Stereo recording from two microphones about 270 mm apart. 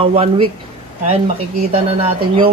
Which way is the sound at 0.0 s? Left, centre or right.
Right.